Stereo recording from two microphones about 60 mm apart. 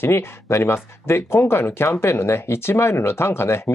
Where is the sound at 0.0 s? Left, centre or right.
Left.